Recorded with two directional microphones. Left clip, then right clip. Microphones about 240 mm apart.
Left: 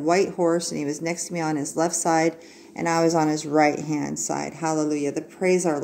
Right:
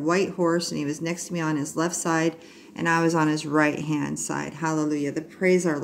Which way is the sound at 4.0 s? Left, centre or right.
Centre.